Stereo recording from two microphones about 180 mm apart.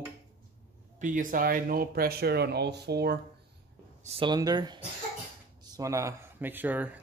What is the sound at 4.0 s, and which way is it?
Speech, 30° right (ahead or behind).